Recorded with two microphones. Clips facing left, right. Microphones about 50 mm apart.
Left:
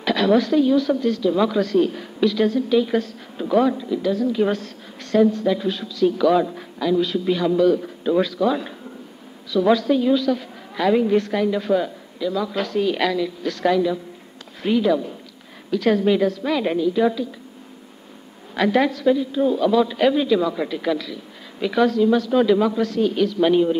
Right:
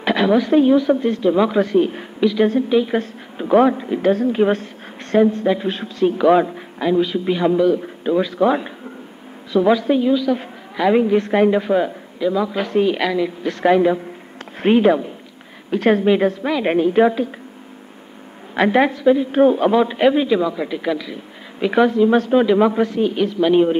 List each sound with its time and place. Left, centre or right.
0.0 s a sound: right
0.5 s a woman's voice: right
8.4 s a woman's voice: right
9.7 s a woman's voice: centre
13.2 s a woman's voice: right
16.6 s a woman's voice: right
18.5 s a woman's voice: right
22.1 s a woman's voice: right
22.4 s a woman's voice: right
23.5 s a woman's voice: right